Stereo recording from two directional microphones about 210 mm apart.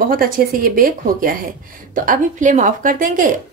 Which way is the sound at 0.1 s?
45° right (ahead or behind).